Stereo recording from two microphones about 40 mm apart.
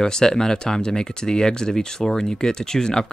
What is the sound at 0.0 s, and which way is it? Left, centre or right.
Speech, centre.